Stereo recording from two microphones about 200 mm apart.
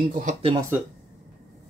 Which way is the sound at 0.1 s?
40° right (ahead or behind).